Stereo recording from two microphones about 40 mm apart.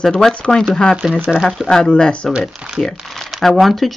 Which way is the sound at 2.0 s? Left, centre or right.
Left.